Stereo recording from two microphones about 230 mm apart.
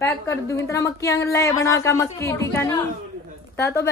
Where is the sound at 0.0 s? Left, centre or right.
Centre.